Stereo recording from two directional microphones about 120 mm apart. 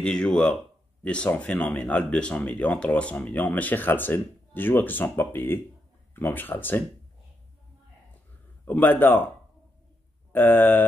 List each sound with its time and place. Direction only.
0.0 s speech: 5° left (ahead or behind)
8.6 s speech: 15° left (ahead or behind)
10.3 s speech: 15° left (ahead or behind)